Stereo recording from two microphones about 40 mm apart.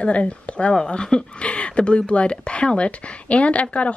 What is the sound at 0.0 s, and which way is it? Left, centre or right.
Speech, left.